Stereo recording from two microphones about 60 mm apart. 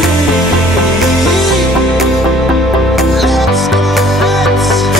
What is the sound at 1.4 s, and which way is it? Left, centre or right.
Music, centre.